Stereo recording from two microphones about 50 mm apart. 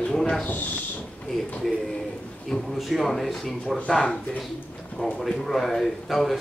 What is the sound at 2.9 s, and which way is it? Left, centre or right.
Speech, centre.